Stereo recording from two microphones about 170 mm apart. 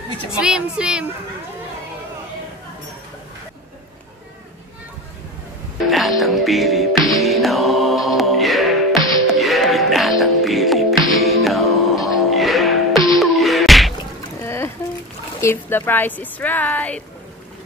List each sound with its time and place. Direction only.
0.3 s a woman's voice: 5° right (ahead or behind)
5.9 s music: centre (ahead or behind)
14.4 s boat: 15° left (ahead or behind)
15.4 s speech: 10° left (ahead or behind)